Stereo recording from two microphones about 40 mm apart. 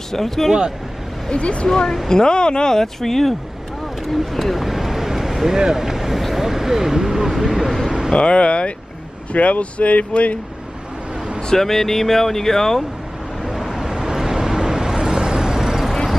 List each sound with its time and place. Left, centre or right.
0.1 s speech: centre
1.3 s speech: left
1.7 s speech: centre
4.0 s a sound: centre
5.6 s speech: centre
8.1 s speech: left
11.4 s speech: centre
13.4 s vehicle: centre